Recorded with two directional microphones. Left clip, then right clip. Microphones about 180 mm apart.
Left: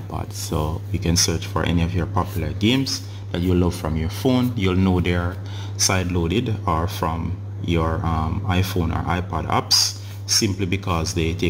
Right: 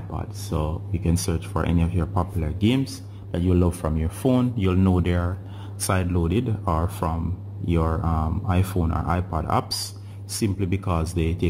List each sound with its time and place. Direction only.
0.1 s speech: 10° left (ahead or behind)
1.2 s speech: centre (ahead or behind)
9.7 s a sound: 30° right (ahead or behind)
10.4 s speech: centre (ahead or behind)